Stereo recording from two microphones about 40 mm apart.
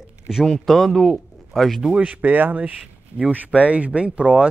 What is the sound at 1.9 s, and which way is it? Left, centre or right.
Speech, right.